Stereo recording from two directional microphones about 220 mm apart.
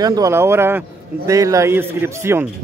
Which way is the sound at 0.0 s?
15° right (ahead or behind).